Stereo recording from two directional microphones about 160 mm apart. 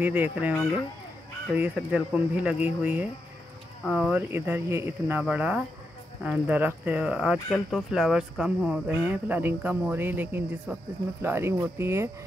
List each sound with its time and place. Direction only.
0.0 s speech: 10° right (ahead or behind)